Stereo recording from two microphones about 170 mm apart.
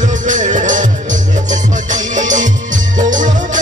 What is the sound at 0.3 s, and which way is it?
Music, 45° right (ahead or behind).